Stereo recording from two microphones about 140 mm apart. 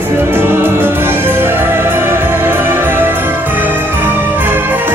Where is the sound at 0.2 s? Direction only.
15° right (ahead or behind).